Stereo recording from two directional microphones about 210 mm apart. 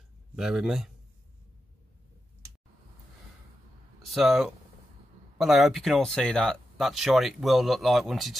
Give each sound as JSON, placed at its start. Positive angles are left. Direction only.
{"t": 0.4, "sound": "speech", "side_deg": 0}
{"t": 4.1, "sound": "speech", "side_deg": 0}